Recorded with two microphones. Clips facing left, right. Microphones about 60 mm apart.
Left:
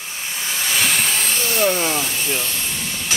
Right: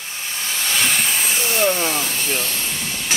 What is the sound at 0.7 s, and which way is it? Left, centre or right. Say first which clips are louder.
Hiss: even; centre.